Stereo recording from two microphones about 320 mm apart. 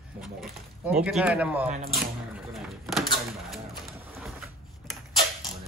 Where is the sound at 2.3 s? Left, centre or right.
Centre.